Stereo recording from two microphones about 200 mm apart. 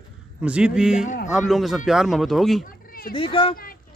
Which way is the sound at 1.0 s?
40° left (ahead or behind).